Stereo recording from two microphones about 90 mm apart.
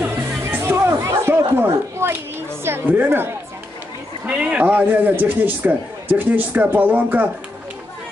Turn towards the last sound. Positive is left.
turn(degrees=-20)  # may be behind; listen again after turning